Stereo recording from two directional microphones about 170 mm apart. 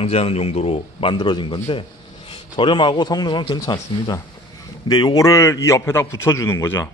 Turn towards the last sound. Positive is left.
turn(degrees=15)  # may be behind; listen again after turning